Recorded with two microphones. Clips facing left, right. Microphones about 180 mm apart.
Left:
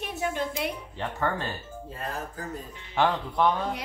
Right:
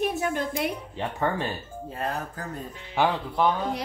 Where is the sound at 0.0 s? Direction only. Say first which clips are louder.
Right 4 dB; 45° right (ahead or behind).